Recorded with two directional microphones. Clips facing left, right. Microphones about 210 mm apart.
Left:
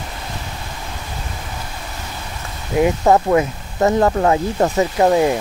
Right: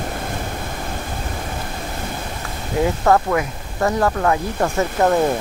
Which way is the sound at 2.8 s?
20° left (ahead or behind).